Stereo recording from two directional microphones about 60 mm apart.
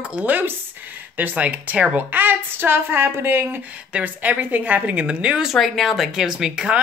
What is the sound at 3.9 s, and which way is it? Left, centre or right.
A woman's voice, right.